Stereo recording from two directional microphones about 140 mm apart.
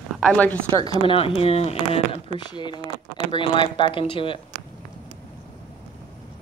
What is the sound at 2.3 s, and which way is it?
Speech, 30° left (ahead or behind).